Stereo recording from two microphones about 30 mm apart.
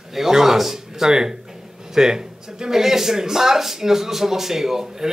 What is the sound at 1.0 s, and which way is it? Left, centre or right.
A man's voice, right.